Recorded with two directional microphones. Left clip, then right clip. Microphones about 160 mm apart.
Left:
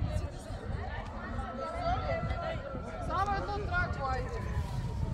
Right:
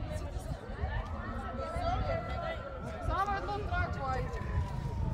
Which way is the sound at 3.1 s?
15° left (ahead or behind).